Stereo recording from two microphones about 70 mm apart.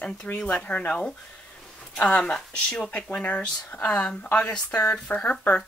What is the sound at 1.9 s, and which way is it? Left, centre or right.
Speech, centre.